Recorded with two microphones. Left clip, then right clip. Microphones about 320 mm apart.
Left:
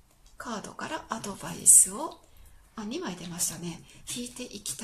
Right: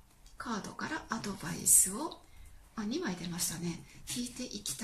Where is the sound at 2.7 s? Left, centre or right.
Centre.